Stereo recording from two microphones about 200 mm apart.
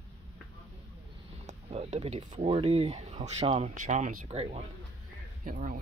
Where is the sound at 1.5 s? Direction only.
35° right (ahead or behind).